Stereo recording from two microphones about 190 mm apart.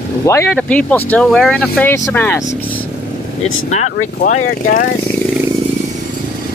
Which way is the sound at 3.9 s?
45° left (ahead or behind).